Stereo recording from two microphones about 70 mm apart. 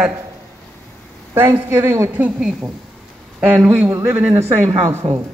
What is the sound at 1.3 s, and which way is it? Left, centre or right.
Speech, right.